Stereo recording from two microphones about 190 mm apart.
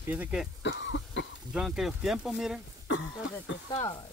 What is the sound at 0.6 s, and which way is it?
Speech, 75° left (ahead or behind).